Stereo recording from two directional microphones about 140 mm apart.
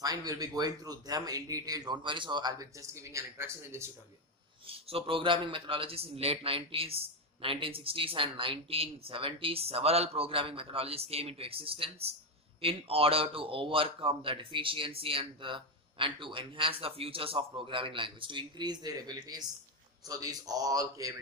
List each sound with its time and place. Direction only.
0.0 s speech: 25° right (ahead or behind)
4.6 s a man's voice: 40° right (ahead or behind); by 21.2 s 25° right (ahead or behind)